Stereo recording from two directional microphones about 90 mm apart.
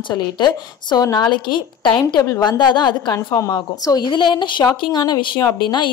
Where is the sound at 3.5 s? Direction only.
50° left (ahead or behind).